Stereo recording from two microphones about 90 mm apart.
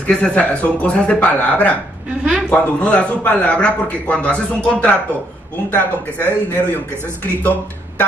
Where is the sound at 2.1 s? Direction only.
10° right (ahead or behind).